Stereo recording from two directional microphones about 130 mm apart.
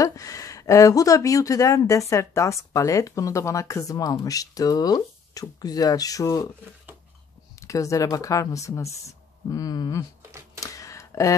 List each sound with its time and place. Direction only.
0.0 s speech: 25° left (ahead or behind)
7.6 s speech: 25° left (ahead or behind)
10.6 s a sound: 25° left (ahead or behind)